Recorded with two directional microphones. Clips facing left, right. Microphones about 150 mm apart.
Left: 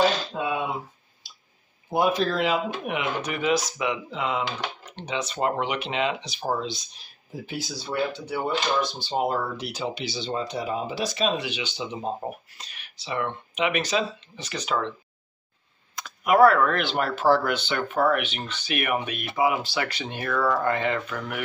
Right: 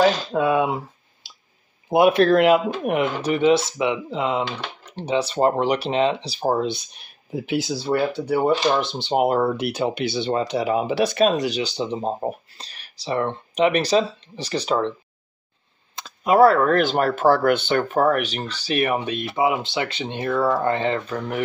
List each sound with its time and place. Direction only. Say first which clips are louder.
0.3 s a sound: right 8 dB; 80° right
1.9 s speech: right 8 dB; 70° right (ahead or behind); by 3.1 s 45° right (ahead or behind)
3.2 s speech: right 7 dB; 30° right (ahead or behind); by 7.7 s 75° right (ahead or behind)
7.9 s speech: right 7 dB; 60° right (ahead or behind); by 15.0 s 35° right (ahead or behind)
16.0 s speech: right 3 dB; 30° right (ahead or behind)